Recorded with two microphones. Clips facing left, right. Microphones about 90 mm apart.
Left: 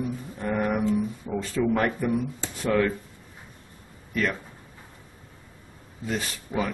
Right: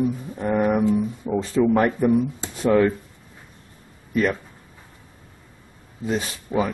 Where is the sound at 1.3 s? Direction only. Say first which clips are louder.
Right 7 dB; 20° right (ahead or behind).